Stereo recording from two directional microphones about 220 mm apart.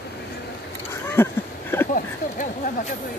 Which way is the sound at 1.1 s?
10° left (ahead or behind).